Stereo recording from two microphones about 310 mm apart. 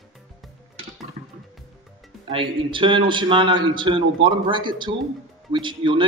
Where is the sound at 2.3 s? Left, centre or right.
Centre.